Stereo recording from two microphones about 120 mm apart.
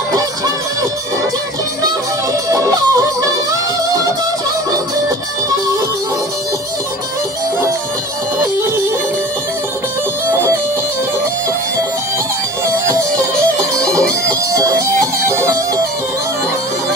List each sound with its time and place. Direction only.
2.5 s music: 30° right (ahead or behind)
10.3 s music: 20° right (ahead or behind)
14.6 s music: 25° right (ahead or behind)